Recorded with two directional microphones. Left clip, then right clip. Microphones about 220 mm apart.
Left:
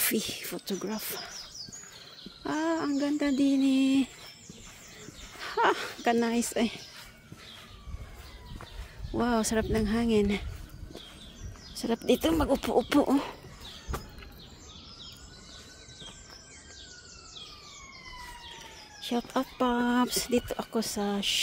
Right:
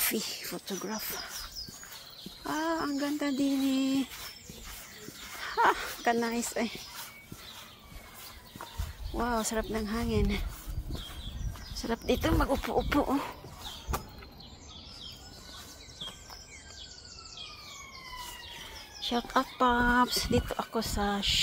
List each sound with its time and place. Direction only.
0.0 s speech: 35° left (ahead or behind)
2.4 s speech: 35° left (ahead or behind)
5.4 s speech: 40° left (ahead or behind)
9.2 s speech: 45° left (ahead or behind)
11.8 s speech: 40° left (ahead or behind)
13.9 s a sound: 50° right (ahead or behind)
19.0 s speech: 30° left (ahead or behind)